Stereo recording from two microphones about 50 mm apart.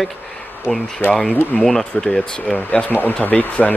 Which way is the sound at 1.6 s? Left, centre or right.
Centre.